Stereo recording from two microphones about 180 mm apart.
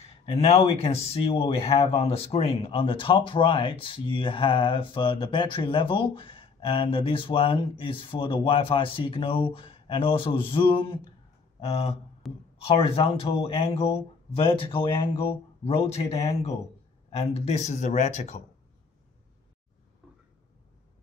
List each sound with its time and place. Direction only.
0.2 s speech: 35° left (ahead or behind)
12.2 s speech: centre (ahead or behind)
12.6 s speech: 30° left (ahead or behind)